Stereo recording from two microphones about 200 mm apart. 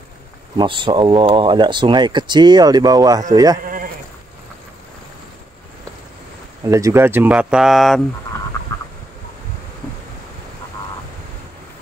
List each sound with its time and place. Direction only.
0.6 s speech: 25° right (ahead or behind)
3.6 s sheep: 45° right (ahead or behind)
6.6 s speech: 15° right (ahead or behind); by 8.0 s centre (ahead or behind)